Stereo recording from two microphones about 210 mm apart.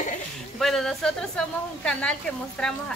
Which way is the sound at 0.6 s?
Centre (ahead or behind).